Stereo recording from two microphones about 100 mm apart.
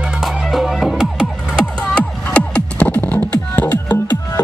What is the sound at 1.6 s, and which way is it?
Music, 10° left (ahead or behind).